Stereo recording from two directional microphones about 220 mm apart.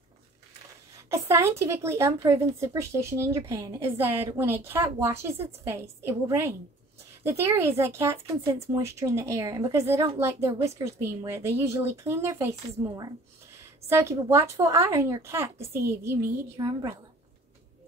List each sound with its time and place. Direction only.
1.1 s a woman's voice: 15° right (ahead or behind)